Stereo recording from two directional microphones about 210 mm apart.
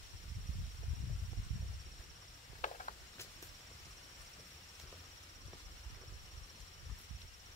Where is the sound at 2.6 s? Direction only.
35° left (ahead or behind).